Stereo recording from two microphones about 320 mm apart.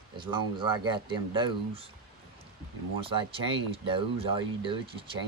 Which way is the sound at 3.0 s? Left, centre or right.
Centre.